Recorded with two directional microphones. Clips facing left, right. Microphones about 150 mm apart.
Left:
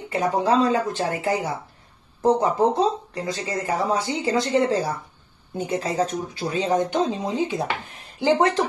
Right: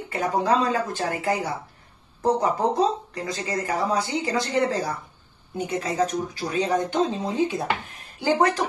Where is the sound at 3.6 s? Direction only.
25° left (ahead or behind).